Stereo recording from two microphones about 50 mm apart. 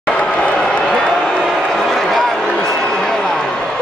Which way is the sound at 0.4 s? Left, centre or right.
Centre.